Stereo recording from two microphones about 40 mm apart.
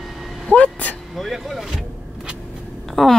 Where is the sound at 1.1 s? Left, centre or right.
Centre.